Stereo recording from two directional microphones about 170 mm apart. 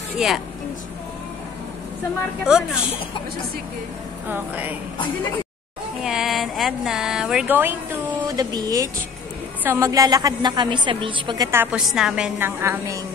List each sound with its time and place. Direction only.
0.2 s speech: 5° right (ahead or behind)
2.4 s speech: 5° right (ahead or behind)
4.3 s a woman's voice: 10° right (ahead or behind)
6.0 s speech: centre (ahead or behind)
8.3 s a woman's voice: 25° right (ahead or behind)
11.8 s a woman's voice: centre (ahead or behind)